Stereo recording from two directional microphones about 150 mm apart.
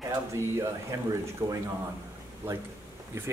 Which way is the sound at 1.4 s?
20° right (ahead or behind).